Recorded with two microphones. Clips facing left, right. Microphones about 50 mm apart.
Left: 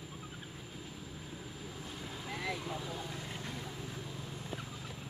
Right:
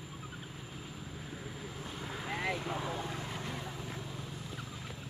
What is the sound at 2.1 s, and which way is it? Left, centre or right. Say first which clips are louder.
Vehicle: right 4 dB; right.